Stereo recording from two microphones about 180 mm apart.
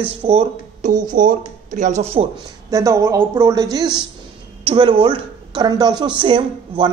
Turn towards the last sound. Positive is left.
turn(degrees=-25)  # may be behind; listen again after turning